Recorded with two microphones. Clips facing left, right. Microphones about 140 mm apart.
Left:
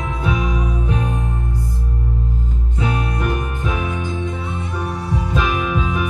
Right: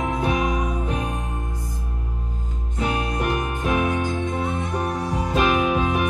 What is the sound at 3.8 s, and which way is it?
Music, 50° right (ahead or behind).